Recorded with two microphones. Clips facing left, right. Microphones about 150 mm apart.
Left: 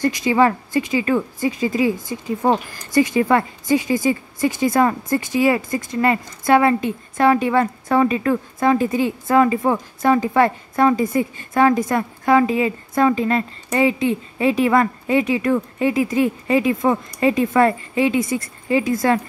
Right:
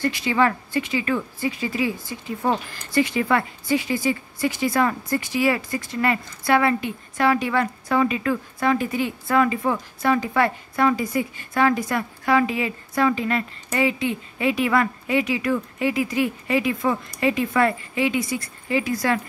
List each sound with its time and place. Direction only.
0.0 s a woman's voice: 20° left (ahead or behind)
2.4 s speech: 45° left (ahead or behind)
3.6 s speech: 20° left (ahead or behind)
6.6 s a woman's voice: 35° left (ahead or behind)
8.7 s a woman's voice: 25° left (ahead or behind)